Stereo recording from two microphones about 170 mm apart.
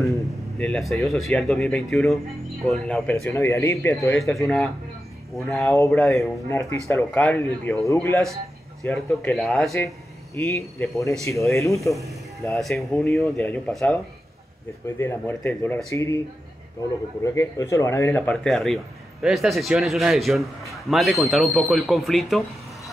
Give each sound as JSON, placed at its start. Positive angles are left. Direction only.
{"t": 0.0, "sound": "a sound", "side_deg": 20}
{"t": 0.7, "sound": "a man's voice", "side_deg": 0}
{"t": 5.6, "sound": "a man's voice", "side_deg": 15}
{"t": 10.3, "sound": "a man's voice", "side_deg": 15}
{"t": 12.5, "sound": "a man's voice", "side_deg": 0}
{"t": 15.0, "sound": "a man's voice", "side_deg": 15}
{"t": 17.2, "sound": "a man's voice", "side_deg": 15}